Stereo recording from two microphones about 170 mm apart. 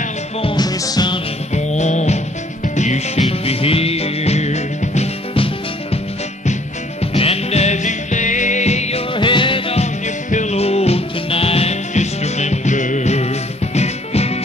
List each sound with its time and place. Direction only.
0.4 s music: 25° left (ahead or behind)
1.5 s music: 45° left (ahead or behind)
7.0 s music: 35° left (ahead or behind)